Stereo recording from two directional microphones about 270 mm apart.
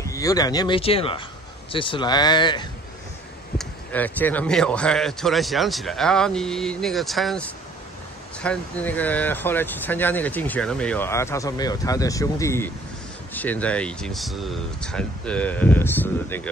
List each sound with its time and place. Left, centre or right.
0.0 s speech: centre
3.5 s speech: centre